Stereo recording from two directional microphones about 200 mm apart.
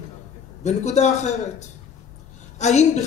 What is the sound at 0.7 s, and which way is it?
Speech, 35° left (ahead or behind).